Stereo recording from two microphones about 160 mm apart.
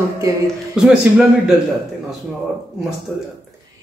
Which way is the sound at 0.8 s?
5° right (ahead or behind).